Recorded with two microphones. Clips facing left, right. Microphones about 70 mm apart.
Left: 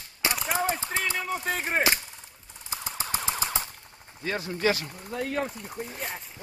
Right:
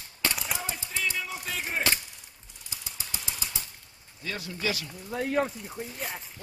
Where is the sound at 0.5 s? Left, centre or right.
Left.